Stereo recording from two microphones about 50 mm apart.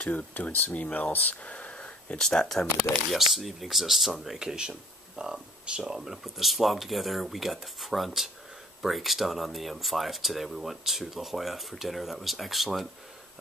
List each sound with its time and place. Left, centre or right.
0.3 s speech: left
2.1 s speech: centre
2.9 s speech: centre